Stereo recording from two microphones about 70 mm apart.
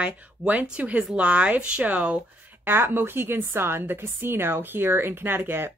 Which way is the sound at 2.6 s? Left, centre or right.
Right.